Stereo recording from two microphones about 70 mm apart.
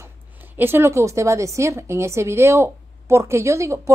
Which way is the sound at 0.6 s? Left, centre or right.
Right.